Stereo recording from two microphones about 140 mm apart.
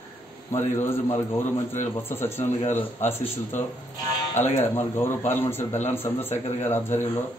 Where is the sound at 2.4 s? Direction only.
55° left (ahead or behind).